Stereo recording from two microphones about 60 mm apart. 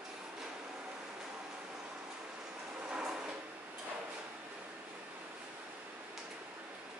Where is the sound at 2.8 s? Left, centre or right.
Centre.